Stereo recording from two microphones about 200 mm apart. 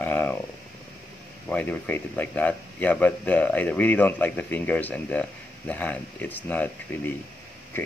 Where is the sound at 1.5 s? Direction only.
5° left (ahead or behind).